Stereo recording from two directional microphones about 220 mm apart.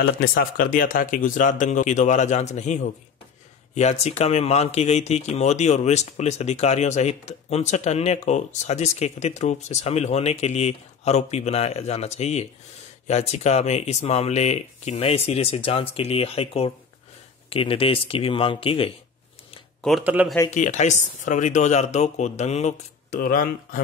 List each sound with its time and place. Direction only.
0.0 s speech: 40° left (ahead or behind); by 18.9 s 25° left (ahead or behind)
19.8 s speech: 5° right (ahead or behind)
20.4 s speech: 30° left (ahead or behind)